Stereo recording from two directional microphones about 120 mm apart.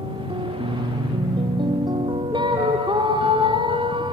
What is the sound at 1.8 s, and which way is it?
Music, 40° right (ahead or behind).